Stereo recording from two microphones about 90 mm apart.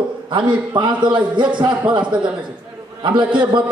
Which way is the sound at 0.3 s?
65° right (ahead or behind).